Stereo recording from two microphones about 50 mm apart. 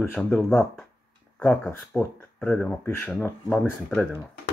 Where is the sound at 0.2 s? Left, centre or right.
Left.